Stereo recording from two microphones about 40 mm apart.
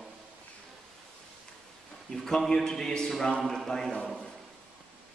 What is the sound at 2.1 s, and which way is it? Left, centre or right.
A man's voice, centre.